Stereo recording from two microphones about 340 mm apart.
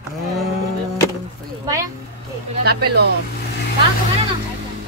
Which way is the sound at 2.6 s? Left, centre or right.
Right.